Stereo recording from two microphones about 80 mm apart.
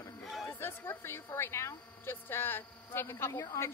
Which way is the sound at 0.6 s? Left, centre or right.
Left.